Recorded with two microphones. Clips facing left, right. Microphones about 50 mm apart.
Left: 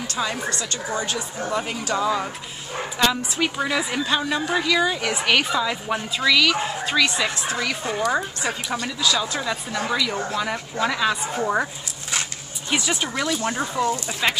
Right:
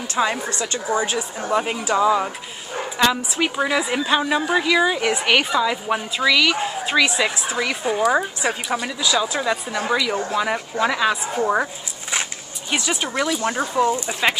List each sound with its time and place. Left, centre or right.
0.1 s a woman's voice: right; by 11.7 s centre
12.7 s a woman's voice: centre
13.9 s speech: centre